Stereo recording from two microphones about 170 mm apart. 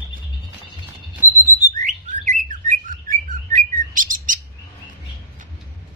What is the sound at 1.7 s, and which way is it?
Bird, 50° right (ahead or behind).